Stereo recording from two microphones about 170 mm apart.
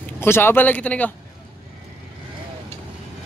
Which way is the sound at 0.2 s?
15° left (ahead or behind).